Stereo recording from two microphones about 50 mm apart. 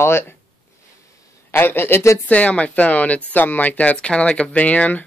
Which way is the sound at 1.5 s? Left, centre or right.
Left.